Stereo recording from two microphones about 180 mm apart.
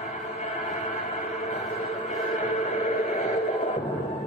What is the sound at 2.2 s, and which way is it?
Music, 45° left (ahead or behind).